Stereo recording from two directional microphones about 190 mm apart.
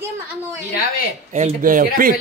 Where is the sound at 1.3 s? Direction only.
40° right (ahead or behind).